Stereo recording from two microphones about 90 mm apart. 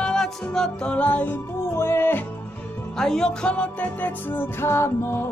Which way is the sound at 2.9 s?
5° left (ahead or behind).